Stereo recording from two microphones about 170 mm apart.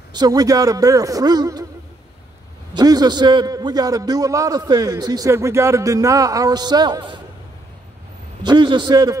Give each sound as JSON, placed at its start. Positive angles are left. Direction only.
{"t": 0.1, "sound": "a man's voice", "side_deg": -25}
{"t": 2.7, "sound": "a man's voice", "side_deg": -25}
{"t": 8.4, "sound": "a man's voice", "side_deg": -25}